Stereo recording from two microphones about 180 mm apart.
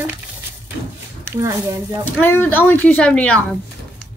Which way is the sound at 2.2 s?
10° left (ahead or behind).